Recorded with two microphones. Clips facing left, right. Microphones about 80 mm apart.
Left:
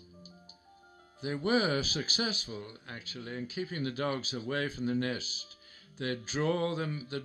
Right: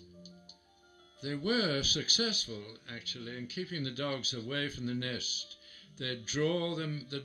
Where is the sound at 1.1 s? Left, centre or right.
Left.